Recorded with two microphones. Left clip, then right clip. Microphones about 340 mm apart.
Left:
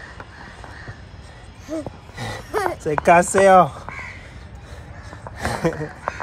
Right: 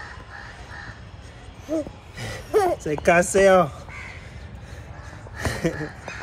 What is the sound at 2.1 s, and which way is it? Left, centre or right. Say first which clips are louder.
Speech: right 3 dB; centre.